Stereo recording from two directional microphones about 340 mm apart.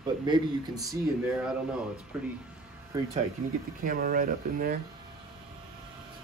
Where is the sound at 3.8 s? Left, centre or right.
Right.